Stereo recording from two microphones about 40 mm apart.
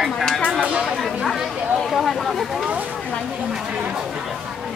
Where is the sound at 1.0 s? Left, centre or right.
Centre.